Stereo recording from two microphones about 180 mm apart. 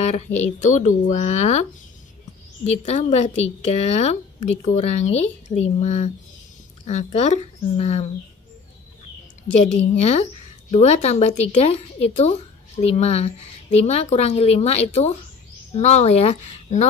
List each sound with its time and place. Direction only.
0.1 s a woman's voice: 40° left (ahead or behind)
9.8 s a woman's voice: 35° left (ahead or behind)